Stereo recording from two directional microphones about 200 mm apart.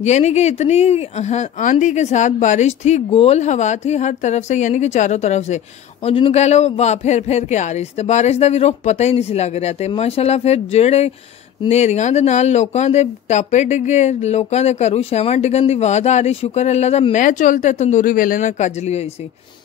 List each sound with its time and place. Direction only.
0.0 s speech: 35° left (ahead or behind)